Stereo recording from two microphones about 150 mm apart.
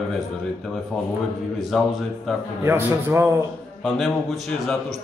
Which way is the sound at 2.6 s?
15° right (ahead or behind).